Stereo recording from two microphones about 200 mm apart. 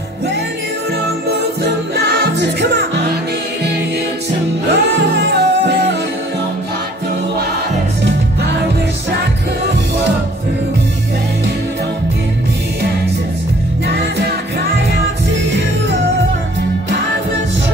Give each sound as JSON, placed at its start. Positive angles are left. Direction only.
{"t": 1.6, "sound": "music", "side_deg": -55}
{"t": 4.6, "sound": "music", "side_deg": -55}
{"t": 13.8, "sound": "music", "side_deg": -55}